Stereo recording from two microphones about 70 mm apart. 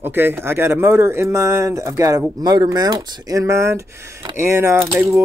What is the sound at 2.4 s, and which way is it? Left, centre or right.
Speech, right.